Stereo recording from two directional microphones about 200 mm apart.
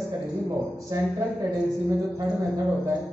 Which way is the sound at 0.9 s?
15° right (ahead or behind).